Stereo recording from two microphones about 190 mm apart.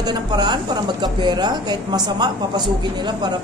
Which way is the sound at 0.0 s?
20° right (ahead or behind).